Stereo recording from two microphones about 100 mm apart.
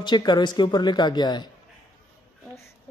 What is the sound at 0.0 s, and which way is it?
A man's voice, 45° left (ahead or behind).